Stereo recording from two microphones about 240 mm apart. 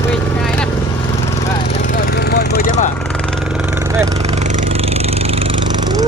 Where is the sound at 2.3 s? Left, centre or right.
Left.